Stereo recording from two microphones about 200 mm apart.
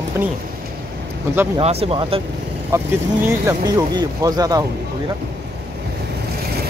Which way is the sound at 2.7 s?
15° right (ahead or behind).